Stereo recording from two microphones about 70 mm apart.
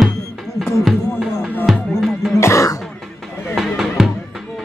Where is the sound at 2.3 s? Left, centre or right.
Left.